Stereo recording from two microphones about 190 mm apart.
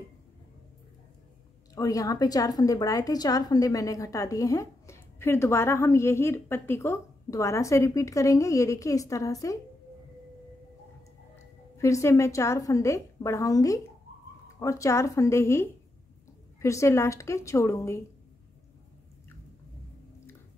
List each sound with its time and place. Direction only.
1.8 s a woman's voice: 20° left (ahead or behind)
11.8 s a woman's voice: 15° left (ahead or behind)